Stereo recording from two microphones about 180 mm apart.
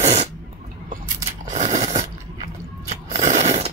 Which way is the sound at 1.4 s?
40° right (ahead or behind).